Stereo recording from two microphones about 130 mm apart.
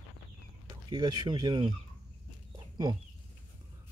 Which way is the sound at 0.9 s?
35° right (ahead or behind).